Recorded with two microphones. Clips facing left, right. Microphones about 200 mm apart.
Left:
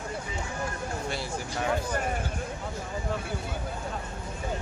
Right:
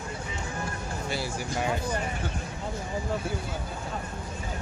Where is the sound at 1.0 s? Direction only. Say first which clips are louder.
Right 5 dB; 5° right (ahead or behind).